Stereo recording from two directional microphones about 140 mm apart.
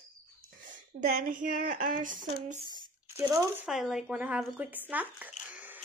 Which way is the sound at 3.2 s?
20° right (ahead or behind).